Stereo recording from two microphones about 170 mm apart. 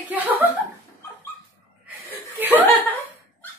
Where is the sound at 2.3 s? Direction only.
10° right (ahead or behind).